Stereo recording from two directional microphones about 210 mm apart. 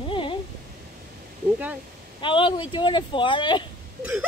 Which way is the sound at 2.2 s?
25° left (ahead or behind).